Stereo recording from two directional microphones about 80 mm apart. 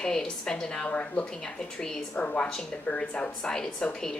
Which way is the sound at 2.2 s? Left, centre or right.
Centre.